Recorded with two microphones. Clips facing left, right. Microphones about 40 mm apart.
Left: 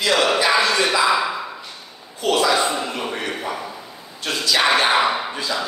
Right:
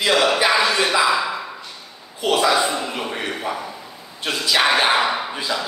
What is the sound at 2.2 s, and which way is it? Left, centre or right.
Speech, centre.